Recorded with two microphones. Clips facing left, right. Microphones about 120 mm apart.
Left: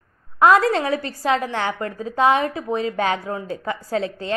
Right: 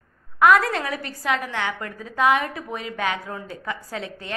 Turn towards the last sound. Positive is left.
turn(degrees=30)  # may be behind; listen again after turning